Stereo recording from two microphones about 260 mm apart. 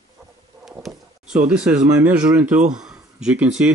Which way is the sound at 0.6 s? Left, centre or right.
Centre.